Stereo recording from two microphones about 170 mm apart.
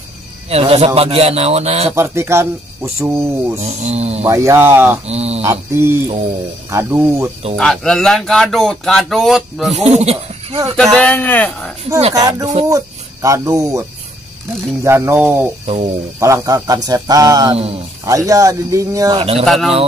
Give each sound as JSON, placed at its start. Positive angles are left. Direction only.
{"t": 0.5, "sound": "a man's voice", "side_deg": -35}
{"t": 2.0, "sound": "speech", "side_deg": -15}
{"t": 3.6, "sound": "a man's voice", "side_deg": -40}
{"t": 4.2, "sound": "speech", "side_deg": -15}
{"t": 5.0, "sound": "a man's voice", "side_deg": -35}
{"t": 5.4, "sound": "speech", "side_deg": -15}
{"t": 7.5, "sound": "speech", "side_deg": 5}
{"t": 9.8, "sound": "speech", "side_deg": -40}
{"t": 10.8, "sound": "a man's voice", "side_deg": 5}
{"t": 12.1, "sound": "speech", "side_deg": -20}
{"t": 15.6, "sound": "a man's voice", "side_deg": -35}
{"t": 16.2, "sound": "speech", "side_deg": -20}
{"t": 19.1, "sound": "a man's voice", "side_deg": -35}
{"t": 19.4, "sound": "speech", "side_deg": 0}